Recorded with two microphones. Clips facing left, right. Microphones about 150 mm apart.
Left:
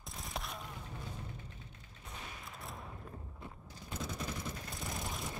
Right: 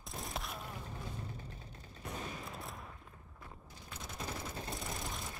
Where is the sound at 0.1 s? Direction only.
Centre (ahead or behind).